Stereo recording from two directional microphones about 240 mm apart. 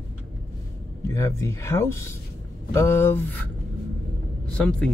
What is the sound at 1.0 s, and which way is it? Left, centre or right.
A man's voice, centre.